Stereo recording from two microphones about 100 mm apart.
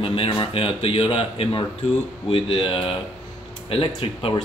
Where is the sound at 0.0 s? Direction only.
65° left (ahead or behind).